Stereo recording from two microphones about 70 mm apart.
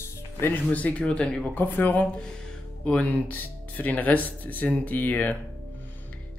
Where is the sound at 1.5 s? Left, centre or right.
Left.